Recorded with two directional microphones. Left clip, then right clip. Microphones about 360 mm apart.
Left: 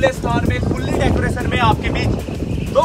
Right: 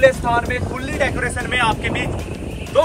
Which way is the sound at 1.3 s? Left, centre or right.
Centre.